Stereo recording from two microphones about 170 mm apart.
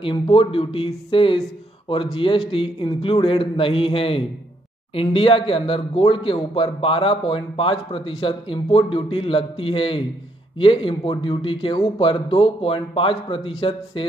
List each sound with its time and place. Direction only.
0.0 s speech: 30° left (ahead or behind)
2.5 s speech: 30° left (ahead or behind)